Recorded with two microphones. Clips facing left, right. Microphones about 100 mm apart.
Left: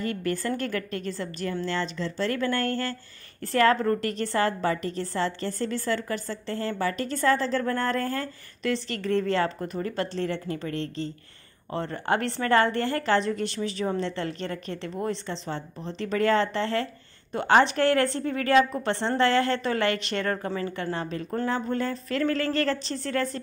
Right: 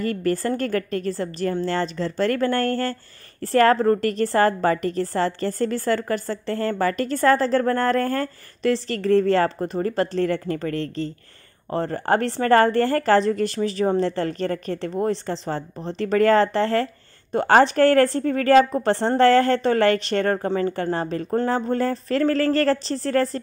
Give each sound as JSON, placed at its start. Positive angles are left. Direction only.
{"t": 0.0, "sound": "a woman's voice", "side_deg": -45}